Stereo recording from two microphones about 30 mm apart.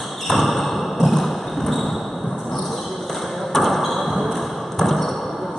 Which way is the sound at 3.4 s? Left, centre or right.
Centre.